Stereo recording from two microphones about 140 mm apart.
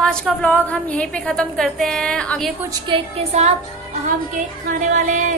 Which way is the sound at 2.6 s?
35° right (ahead or behind).